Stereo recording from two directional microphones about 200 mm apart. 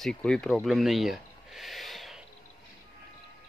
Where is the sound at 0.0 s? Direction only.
5° left (ahead or behind).